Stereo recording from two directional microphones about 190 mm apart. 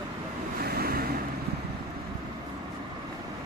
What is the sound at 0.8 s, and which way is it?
Vehicle, 55° right (ahead or behind).